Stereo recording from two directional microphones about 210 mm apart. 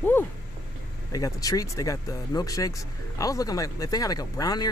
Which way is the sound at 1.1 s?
15° left (ahead or behind).